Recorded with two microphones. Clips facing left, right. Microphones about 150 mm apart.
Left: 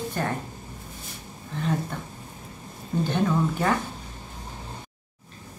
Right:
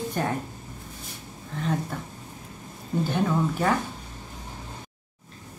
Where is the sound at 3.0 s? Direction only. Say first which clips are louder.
Left 1 dB; 5° right (ahead or behind).